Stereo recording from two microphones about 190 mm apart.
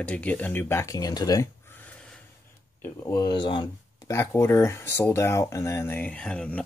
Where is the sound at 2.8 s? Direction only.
20° left (ahead or behind).